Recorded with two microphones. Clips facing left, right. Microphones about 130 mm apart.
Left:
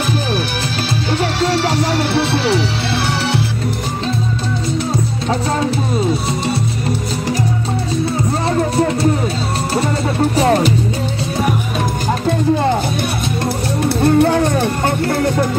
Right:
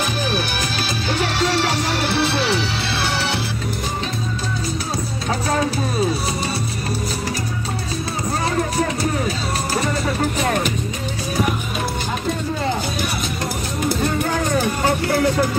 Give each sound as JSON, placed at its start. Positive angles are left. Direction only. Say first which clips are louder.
{"t": 8.5, "sound": "music", "louder": "left 5 dB", "side_deg": 30}
{"t": 13.8, "sound": "music", "louder": "left 8 dB", "side_deg": 65}
{"t": 14.2, "sound": "music", "louder": "left 6 dB", "side_deg": 25}